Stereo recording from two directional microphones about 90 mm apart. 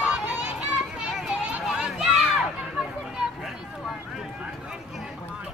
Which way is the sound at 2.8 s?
5° right (ahead or behind).